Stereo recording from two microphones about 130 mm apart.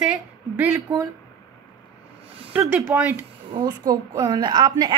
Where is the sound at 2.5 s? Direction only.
10° right (ahead or behind).